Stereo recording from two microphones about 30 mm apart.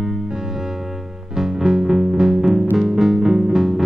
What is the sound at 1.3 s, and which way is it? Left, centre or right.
Music, centre.